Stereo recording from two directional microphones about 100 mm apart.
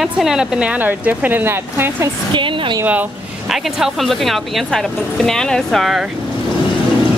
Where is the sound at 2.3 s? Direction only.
55° right (ahead or behind).